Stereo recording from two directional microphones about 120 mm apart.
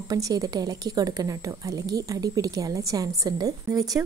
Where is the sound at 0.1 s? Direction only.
30° right (ahead or behind).